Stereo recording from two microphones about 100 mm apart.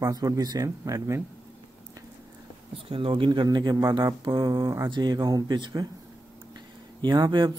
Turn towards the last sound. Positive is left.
turn(degrees=-50)  # may be behind; listen again after turning